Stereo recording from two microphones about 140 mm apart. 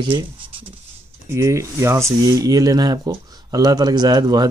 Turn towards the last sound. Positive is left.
turn(degrees=-30)  # may be behind; listen again after turning